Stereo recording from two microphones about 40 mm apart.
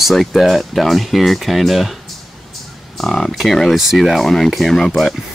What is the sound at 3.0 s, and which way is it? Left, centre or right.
Speech, centre.